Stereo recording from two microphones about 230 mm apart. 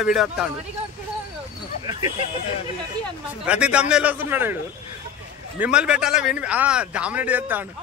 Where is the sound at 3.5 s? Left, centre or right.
Centre.